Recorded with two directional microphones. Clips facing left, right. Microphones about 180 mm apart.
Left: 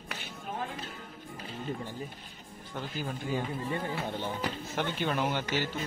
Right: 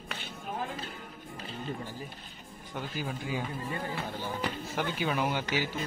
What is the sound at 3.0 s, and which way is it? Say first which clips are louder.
Speech: left 2 dB; 5° right (ahead or behind).